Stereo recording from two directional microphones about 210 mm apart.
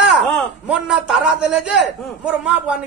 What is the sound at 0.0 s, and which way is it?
A man's voice, 5° right (ahead or behind).